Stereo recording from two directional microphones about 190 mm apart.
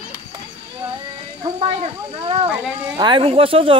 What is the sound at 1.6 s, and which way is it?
Speech, 35° right (ahead or behind).